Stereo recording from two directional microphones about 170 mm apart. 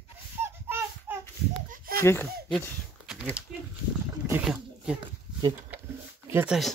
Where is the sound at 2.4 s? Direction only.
5° left (ahead or behind).